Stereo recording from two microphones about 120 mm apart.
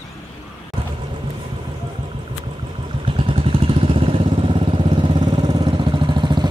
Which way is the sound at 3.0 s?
50° right (ahead or behind).